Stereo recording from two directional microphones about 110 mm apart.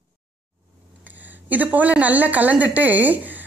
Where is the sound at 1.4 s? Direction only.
15° right (ahead or behind).